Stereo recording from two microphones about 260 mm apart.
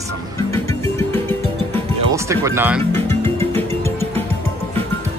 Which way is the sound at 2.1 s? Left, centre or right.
Centre.